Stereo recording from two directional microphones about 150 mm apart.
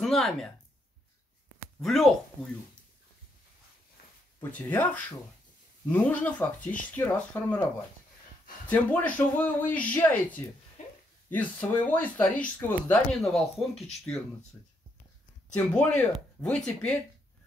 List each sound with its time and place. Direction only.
0.0 s speech: centre (ahead or behind)
1.8 s speech: centre (ahead or behind)
4.4 s speech: 10° left (ahead or behind)
8.6 s speech: 10° left (ahead or behind)
10.8 s a sound: 55° left (ahead or behind)
11.9 s speech: 10° left (ahead or behind)
13.2 s speech: centre (ahead or behind)
15.5 s speech: 10° left (ahead or behind)